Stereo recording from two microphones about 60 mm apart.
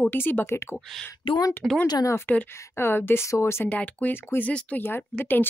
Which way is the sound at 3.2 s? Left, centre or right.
Left.